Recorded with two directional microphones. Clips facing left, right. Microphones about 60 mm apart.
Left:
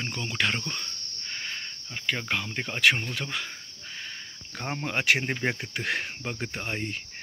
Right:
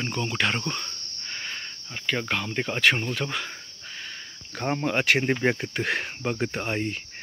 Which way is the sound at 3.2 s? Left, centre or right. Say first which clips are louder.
Right 3 dB; centre.